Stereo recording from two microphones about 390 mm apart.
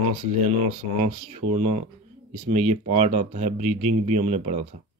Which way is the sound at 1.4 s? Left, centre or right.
Right.